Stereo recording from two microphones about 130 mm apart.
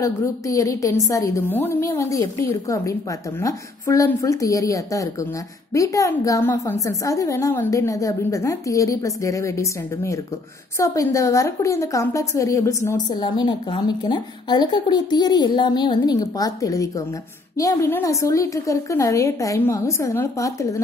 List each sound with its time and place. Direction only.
0.0 s a woman's voice: 25° left (ahead or behind)
13.1 s a woman's voice: 35° left (ahead or behind)